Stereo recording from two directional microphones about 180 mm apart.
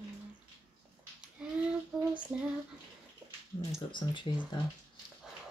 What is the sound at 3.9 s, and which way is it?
Speech, 25° left (ahead or behind).